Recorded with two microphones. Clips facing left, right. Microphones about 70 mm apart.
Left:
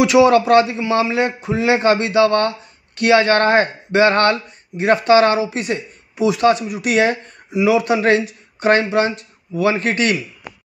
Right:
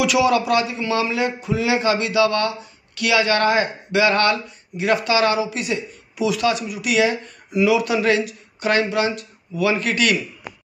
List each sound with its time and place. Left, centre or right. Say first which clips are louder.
0.0 s speech: left 6 dB; left